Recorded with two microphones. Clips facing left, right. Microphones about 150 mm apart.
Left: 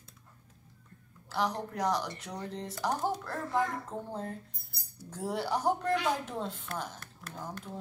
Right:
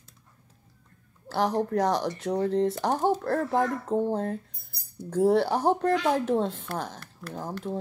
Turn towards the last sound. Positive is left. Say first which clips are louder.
# right 9 dB
turn(degrees=-70)  # may be behind; listen again after turning